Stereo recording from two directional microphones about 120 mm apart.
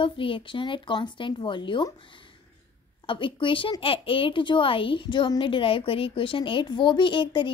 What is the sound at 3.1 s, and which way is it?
A woman's voice, 45° left (ahead or behind).